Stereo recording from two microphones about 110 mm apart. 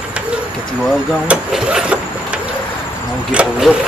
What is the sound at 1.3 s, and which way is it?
Speech, 10° right (ahead or behind).